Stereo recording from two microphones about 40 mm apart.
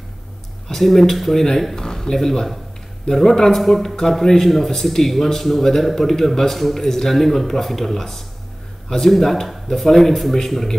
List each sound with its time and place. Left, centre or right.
0.7 s a man's voice: centre
1.8 s a man's voice: centre